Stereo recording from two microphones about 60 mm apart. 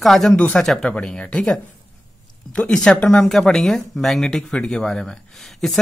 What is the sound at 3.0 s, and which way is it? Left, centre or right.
Speech, left.